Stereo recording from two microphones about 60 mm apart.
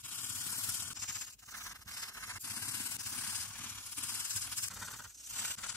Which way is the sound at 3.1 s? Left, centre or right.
Left.